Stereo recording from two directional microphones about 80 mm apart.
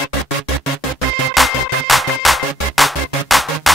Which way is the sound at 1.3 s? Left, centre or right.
Centre.